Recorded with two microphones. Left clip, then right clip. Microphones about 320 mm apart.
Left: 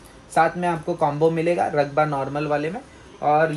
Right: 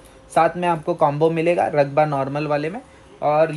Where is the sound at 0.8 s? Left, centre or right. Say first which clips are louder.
Right 2 dB; right.